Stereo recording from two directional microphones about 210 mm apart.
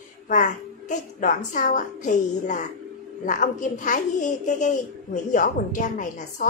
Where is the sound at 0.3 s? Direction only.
35° left (ahead or behind).